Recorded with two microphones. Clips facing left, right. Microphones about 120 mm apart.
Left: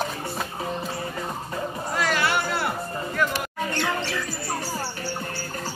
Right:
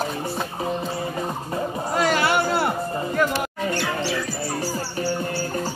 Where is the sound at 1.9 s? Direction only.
25° right (ahead or behind).